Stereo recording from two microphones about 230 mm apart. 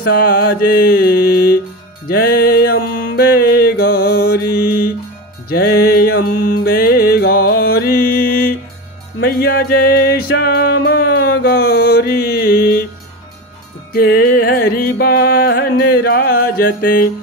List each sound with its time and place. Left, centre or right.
0.0 s mantra: left
2.0 s music: left
5.5 s music: left
6.2 s music: left
6.6 s music: left
13.9 s music: left